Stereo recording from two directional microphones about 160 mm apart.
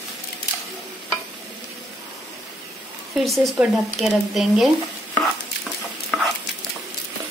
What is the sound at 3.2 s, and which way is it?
A woman's voice, centre (ahead or behind).